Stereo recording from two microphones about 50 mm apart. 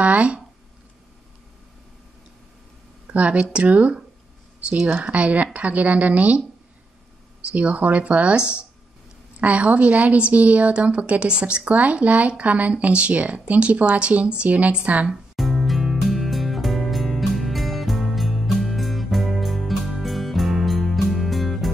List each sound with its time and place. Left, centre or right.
0.0 s a sound: right
3.1 s a woman's voice: right
7.5 s a woman's voice: right
15.3 s music: centre